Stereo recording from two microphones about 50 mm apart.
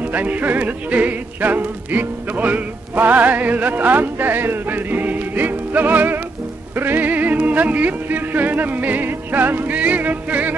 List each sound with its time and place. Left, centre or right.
0.0 s music: right